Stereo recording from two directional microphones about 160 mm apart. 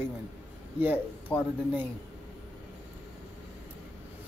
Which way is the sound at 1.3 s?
15° left (ahead or behind).